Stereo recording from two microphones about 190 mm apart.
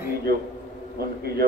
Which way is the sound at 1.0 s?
55° right (ahead or behind).